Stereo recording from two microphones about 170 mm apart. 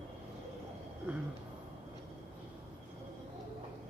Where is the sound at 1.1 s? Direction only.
10° right (ahead or behind).